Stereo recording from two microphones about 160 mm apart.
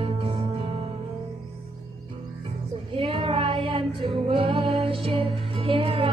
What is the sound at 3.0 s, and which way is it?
Child singing, 35° right (ahead or behind).